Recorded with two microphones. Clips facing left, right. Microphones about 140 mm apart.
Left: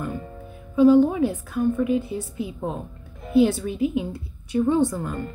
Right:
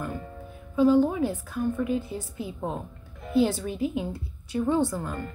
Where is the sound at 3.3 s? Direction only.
15° left (ahead or behind).